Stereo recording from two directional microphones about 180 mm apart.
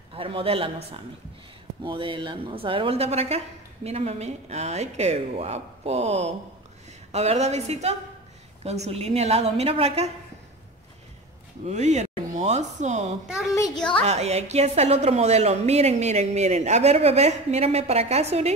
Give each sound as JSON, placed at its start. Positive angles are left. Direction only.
{"t": 0.1, "sound": "a woman's voice", "side_deg": -30}
{"t": 11.6, "sound": "a woman's voice", "side_deg": -40}